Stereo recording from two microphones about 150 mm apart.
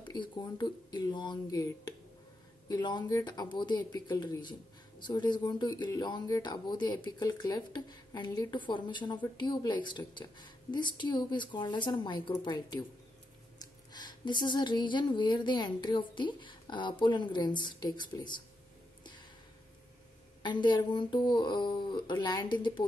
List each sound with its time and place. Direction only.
0.0 s speech: 30° left (ahead or behind)
13.9 s speech: 30° left (ahead or behind)
20.4 s speech: 30° left (ahead or behind)